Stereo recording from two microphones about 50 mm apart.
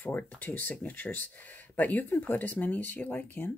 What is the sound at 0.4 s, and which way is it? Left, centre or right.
Speech, left.